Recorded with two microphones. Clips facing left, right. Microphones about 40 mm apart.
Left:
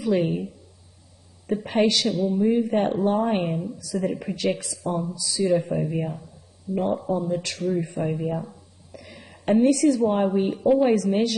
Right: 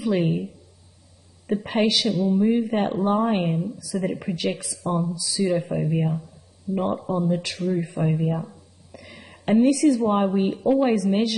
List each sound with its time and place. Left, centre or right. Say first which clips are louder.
0.0 s speech: even; centre
1.5 s speech: even; centre
6.7 s a man's voice: right 1 dB; centre
7.1 s speech: right 1 dB; right
7.8 s a woman's voice: right 2 dB; centre